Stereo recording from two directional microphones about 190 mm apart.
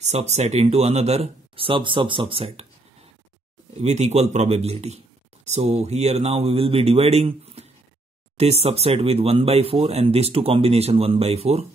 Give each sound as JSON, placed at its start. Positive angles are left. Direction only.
{"t": 0.0, "sound": "speech", "side_deg": -35}
{"t": 3.8, "sound": "speech", "side_deg": -35}